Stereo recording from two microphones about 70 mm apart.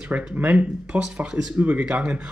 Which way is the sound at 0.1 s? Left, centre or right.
Right.